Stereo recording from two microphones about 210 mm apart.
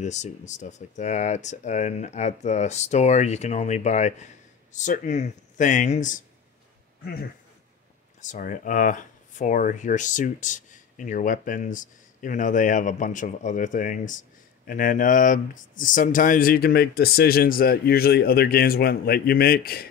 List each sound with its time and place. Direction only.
0.0 s speech: 35° left (ahead or behind)
8.2 s speech: 35° left (ahead or behind)